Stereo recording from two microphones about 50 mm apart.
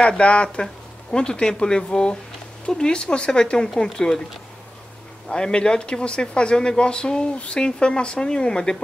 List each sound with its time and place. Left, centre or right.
0.0 s speech: left
5.3 s speech: centre